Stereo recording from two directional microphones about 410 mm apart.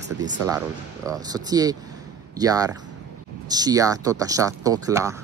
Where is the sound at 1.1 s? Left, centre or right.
Centre.